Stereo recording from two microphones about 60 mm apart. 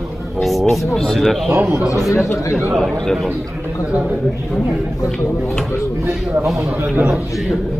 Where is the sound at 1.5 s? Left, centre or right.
Right.